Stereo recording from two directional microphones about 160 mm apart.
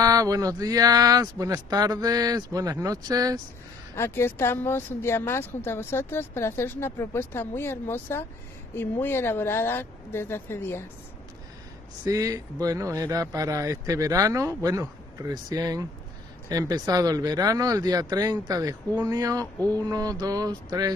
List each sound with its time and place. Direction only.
0.0 s speech: 20° right (ahead or behind)
3.9 s speech: 15° left (ahead or behind)
12.0 s speech: 20° right (ahead or behind)